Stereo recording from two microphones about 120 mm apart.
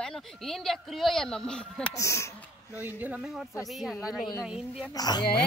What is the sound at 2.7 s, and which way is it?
Speech, 15° right (ahead or behind).